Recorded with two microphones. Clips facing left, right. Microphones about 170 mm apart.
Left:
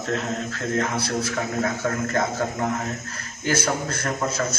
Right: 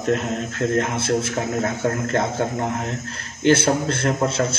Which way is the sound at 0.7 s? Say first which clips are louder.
Right 2 dB; 25° right (ahead or behind).